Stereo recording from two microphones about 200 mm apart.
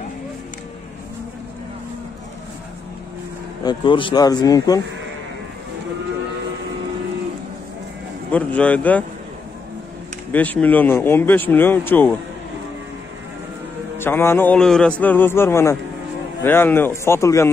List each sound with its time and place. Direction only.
3.6 s speech: 25° left (ahead or behind)
8.3 s a man's voice: 5° left (ahead or behind)
10.3 s a man's voice: 10° left (ahead or behind)
13.9 s a man's voice: 10° left (ahead or behind)